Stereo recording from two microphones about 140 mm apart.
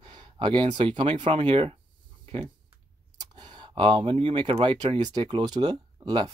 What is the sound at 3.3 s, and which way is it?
Speech, 30° right (ahead or behind).